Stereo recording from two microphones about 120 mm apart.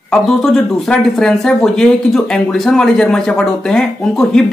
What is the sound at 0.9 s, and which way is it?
A man's voice, 5° left (ahead or behind).